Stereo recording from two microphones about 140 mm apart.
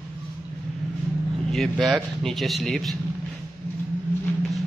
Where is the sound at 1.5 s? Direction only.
Centre (ahead or behind).